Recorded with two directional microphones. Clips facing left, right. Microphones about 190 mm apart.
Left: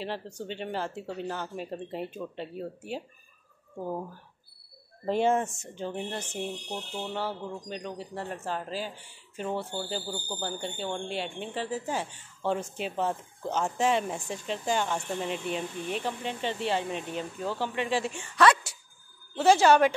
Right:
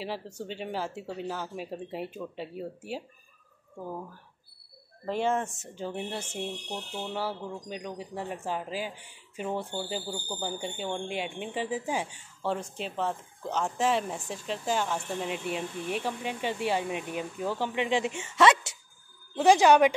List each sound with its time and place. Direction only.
0.0 s speech: 5° right (ahead or behind)
5.0 s speech: 20° left (ahead or behind)
5.4 s speech: 5° right (ahead or behind)
12.4 s speech: centre (ahead or behind); by 19.9 s 15° right (ahead or behind)